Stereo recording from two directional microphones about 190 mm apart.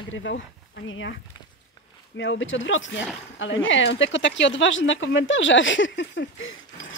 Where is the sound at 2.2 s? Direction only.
80° left.